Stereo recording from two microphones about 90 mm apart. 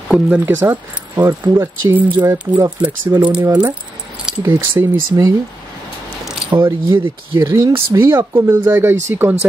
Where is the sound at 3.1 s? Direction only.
45° right (ahead or behind).